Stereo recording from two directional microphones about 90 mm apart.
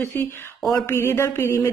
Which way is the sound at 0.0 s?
25° left (ahead or behind).